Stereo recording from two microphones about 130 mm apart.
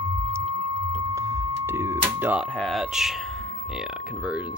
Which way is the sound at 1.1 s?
25° right (ahead or behind).